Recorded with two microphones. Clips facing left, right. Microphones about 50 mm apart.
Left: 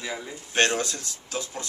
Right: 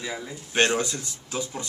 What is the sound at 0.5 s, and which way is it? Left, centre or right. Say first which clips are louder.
Speech: right 1 dB; centre.